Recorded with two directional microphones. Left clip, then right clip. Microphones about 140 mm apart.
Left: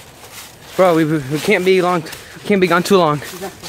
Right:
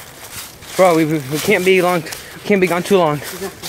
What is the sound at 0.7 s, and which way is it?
Speech, 35° left (ahead or behind).